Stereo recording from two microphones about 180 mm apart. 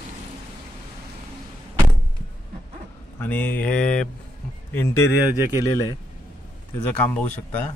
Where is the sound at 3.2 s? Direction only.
10° left (ahead or behind).